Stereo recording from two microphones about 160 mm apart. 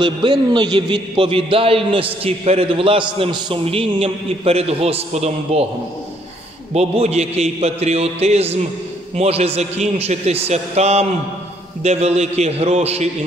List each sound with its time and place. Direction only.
0.0 s a man's voice: 30° right (ahead or behind)
6.7 s a man's voice: 40° right (ahead or behind)